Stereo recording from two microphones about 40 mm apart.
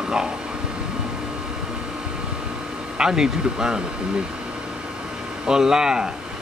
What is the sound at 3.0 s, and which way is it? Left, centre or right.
Speech, centre.